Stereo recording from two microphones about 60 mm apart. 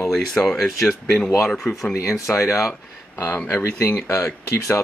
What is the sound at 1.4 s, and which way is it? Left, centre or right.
Speech, centre.